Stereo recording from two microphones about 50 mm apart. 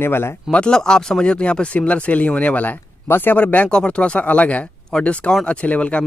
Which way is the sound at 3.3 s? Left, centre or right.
Left.